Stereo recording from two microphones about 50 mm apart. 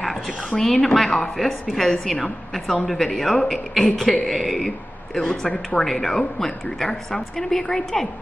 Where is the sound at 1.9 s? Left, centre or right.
Centre.